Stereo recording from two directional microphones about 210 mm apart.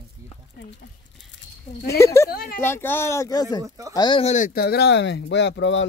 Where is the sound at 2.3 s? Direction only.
45° left (ahead or behind).